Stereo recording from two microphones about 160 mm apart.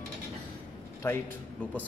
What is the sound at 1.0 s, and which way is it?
Speech, 10° left (ahead or behind).